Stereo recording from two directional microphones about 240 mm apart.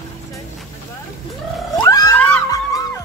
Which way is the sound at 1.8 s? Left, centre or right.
Centre.